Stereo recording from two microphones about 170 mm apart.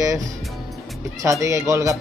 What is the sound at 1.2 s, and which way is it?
Speech, 20° right (ahead or behind).